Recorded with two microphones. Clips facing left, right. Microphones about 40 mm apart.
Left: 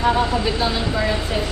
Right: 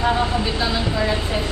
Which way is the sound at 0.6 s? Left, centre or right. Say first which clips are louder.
Left 1 dB; left.